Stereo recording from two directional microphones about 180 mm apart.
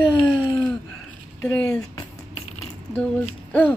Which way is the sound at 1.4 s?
15° left (ahead or behind).